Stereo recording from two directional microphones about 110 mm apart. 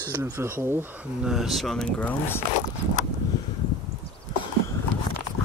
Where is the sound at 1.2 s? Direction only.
5° right (ahead or behind).